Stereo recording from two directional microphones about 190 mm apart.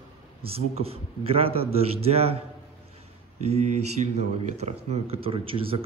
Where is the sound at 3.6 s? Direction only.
35° right (ahead or behind).